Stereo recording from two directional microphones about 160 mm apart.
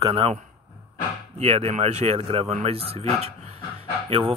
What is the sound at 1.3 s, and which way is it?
Speech, 40° right (ahead or behind).